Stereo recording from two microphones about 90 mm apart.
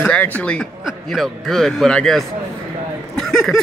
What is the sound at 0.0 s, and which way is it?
Speech, 15° left (ahead or behind).